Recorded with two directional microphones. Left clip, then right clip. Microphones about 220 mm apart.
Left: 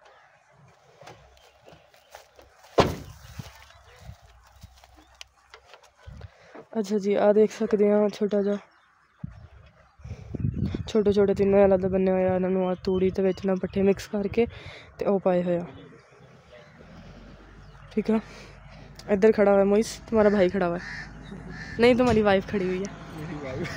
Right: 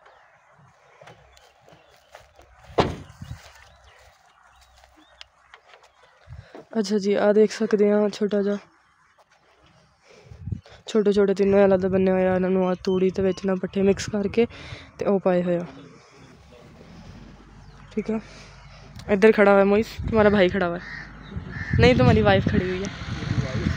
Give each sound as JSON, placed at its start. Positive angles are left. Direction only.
{"t": 2.7, "sound": "a sound", "side_deg": 45}
{"t": 6.7, "sound": "speech", "side_deg": -10}
{"t": 10.6, "sound": "speech", "side_deg": -5}
{"t": 17.8, "sound": "speech", "side_deg": 5}
{"t": 18.9, "sound": "speech", "side_deg": -5}
{"t": 20.2, "sound": "speech", "side_deg": -5}
{"t": 21.7, "sound": "speech", "side_deg": 0}
{"t": 22.9, "sound": "a sound", "side_deg": -30}